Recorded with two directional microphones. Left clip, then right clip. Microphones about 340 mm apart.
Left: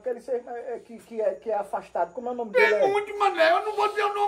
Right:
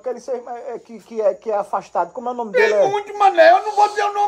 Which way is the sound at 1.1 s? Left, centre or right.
Right.